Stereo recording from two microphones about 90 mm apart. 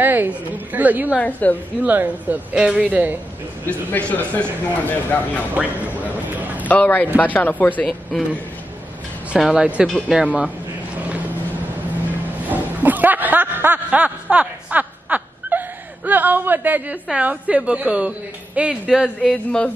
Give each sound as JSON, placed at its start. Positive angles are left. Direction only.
{"t": 0.0, "sound": "a woman's voice", "side_deg": -20}
{"t": 1.1, "sound": "a woman's voice", "side_deg": 15}
{"t": 1.8, "sound": "a woman's voice", "side_deg": -20}
{"t": 3.6, "sound": "speech", "side_deg": 20}
{"t": 5.5, "sound": "a woman's voice", "side_deg": -15}
{"t": 6.3, "sound": "a sound", "side_deg": -20}
{"t": 6.7, "sound": "speech", "side_deg": 20}
{"t": 8.1, "sound": "a man's voice", "side_deg": -5}
{"t": 9.4, "sound": "a woman's voice", "side_deg": -10}
{"t": 11.0, "sound": "vehicle", "side_deg": -15}
{"t": 12.4, "sound": "music", "side_deg": -20}
{"t": 13.8, "sound": "a sound", "side_deg": -15}
{"t": 16.1, "sound": "a woman's voice", "side_deg": -20}
{"t": 19.3, "sound": "a woman's voice", "side_deg": 10}